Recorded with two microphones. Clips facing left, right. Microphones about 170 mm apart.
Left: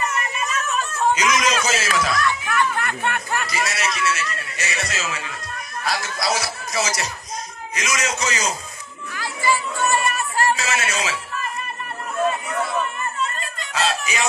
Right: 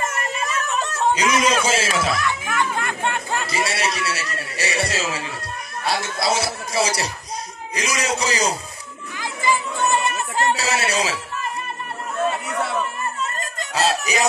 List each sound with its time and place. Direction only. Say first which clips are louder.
1.1 s speech: right 4 dB; 30° right (ahead or behind)
2.1 s music: left 2 dB; 15° right (ahead or behind)
3.4 s a man's voice: right 2 dB; 30° right (ahead or behind)
9.1 s a sound: even; 20° right (ahead or behind)
10.5 s speech: right 2 dB; 35° right (ahead or behind)
13.4 s a sound: right 2 dB; 40° right (ahead or behind)